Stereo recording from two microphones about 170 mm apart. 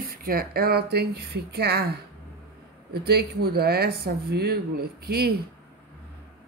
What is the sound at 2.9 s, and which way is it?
Speech, 70° right (ahead or behind).